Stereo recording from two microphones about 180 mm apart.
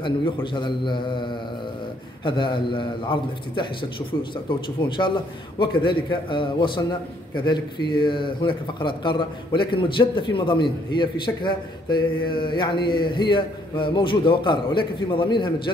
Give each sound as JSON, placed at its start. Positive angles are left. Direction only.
{"t": 0.0, "sound": "speech", "side_deg": 25}